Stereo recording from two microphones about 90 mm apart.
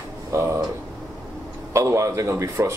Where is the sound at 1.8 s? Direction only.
35° right (ahead or behind).